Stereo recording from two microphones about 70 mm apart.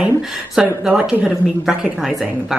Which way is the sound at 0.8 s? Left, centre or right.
Centre.